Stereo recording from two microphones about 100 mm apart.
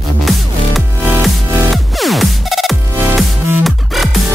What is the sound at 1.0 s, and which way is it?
Music, 15° right (ahead or behind).